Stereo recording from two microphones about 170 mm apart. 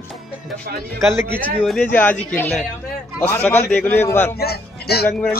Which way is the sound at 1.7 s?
10° left (ahead or behind).